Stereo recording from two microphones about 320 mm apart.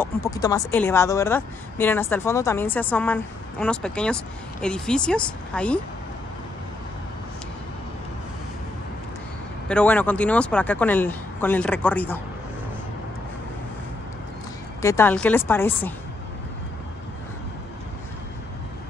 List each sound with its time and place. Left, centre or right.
0.0 s speech: centre
9.7 s speech: centre
14.8 s speech: centre